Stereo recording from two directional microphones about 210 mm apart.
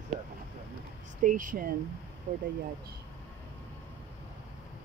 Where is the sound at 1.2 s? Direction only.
40° right (ahead or behind).